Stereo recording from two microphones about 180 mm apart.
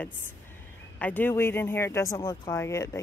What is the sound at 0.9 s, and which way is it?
Speech, 10° left (ahead or behind).